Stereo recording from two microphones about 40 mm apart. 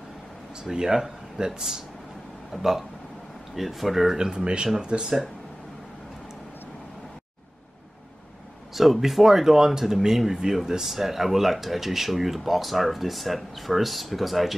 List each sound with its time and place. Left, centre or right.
0.7 s speech: centre
4.2 s speech: centre
8.7 s speech: centre